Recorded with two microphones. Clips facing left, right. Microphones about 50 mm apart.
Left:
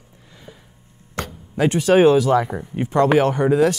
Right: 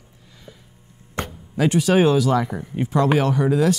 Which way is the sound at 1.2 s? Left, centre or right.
Right.